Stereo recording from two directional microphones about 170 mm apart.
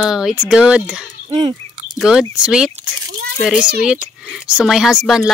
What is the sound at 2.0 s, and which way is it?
Speech, 5° right (ahead or behind).